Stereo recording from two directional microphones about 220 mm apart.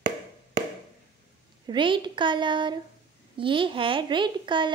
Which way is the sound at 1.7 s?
20° right (ahead or behind).